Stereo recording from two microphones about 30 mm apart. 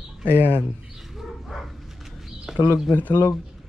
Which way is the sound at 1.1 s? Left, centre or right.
Centre.